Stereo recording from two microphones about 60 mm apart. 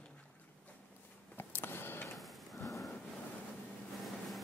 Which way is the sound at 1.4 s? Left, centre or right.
Left.